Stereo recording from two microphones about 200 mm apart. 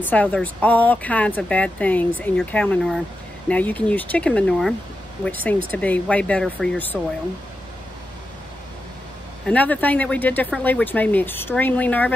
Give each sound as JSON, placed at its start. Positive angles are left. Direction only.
{"t": 0.0, "sound": "speech", "side_deg": 10}
{"t": 9.5, "sound": "speech", "side_deg": 10}